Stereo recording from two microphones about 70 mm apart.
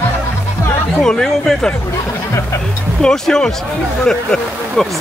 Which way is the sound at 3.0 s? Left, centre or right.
Centre.